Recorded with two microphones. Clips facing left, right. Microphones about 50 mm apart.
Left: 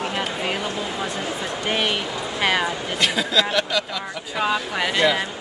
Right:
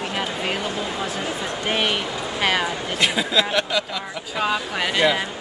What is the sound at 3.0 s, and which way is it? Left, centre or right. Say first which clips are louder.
Speech: even; centre.